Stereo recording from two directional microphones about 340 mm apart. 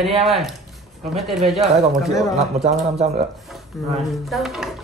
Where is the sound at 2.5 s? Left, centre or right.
Centre.